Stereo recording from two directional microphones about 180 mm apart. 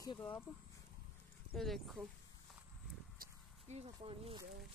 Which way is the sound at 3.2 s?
40° right (ahead or behind).